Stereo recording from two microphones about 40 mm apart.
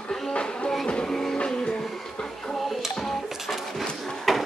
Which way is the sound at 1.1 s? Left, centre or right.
Centre.